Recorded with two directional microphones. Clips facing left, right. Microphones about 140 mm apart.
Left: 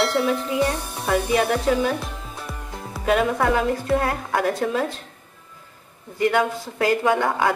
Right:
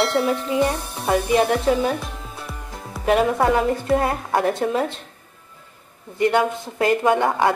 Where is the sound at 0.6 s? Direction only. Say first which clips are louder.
Right 2 dB; 15° right (ahead or behind).